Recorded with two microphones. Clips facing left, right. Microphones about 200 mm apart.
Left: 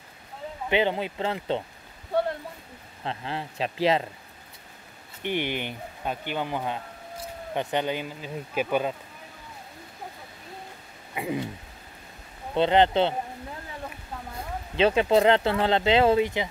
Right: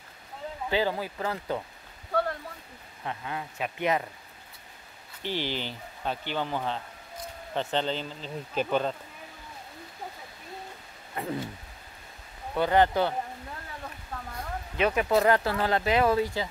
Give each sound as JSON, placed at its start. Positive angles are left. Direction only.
{"t": 0.7, "sound": "speech", "side_deg": 20}
{"t": 3.0, "sound": "speech", "side_deg": 30}
{"t": 5.5, "sound": "speech", "side_deg": 15}
{"t": 11.1, "sound": "speech", "side_deg": 10}
{"t": 12.5, "sound": "speech", "side_deg": 20}
{"t": 14.3, "sound": "speech", "side_deg": 25}